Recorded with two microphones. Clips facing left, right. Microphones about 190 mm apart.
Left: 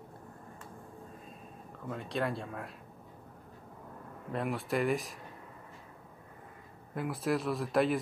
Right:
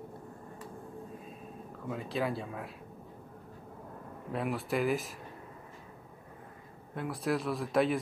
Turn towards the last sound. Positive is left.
turn(degrees=0)  # may be behind; listen again after turning